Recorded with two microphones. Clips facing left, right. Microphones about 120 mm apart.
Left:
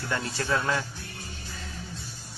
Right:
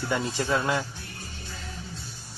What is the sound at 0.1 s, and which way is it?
Speech, 15° right (ahead or behind).